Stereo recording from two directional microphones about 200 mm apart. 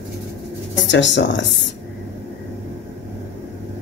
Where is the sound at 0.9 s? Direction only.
65° left (ahead or behind).